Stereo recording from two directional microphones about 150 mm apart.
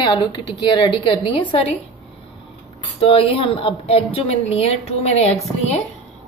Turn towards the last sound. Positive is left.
turn(degrees=45)  # may be behind; listen again after turning